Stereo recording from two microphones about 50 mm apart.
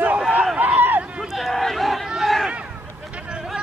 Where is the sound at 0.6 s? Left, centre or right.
Right.